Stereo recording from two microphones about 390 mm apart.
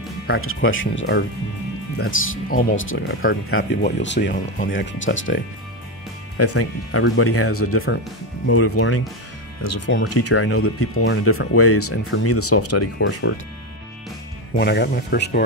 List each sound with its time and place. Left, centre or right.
0.3 s speech: left
14.6 s speech: left